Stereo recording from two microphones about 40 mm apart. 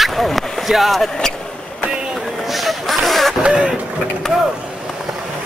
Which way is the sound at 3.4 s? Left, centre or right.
Right.